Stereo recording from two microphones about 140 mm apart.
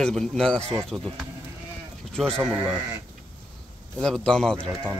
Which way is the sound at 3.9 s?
5° left (ahead or behind).